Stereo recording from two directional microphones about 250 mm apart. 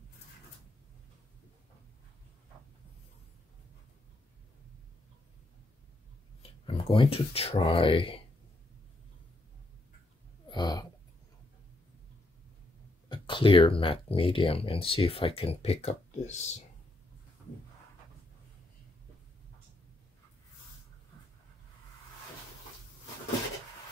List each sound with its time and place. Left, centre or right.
6.6 s speech: left
10.5 s a sound: centre
13.1 s speech: centre